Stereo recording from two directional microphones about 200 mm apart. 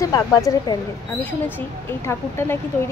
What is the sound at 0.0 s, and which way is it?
Speech, 20° left (ahead or behind).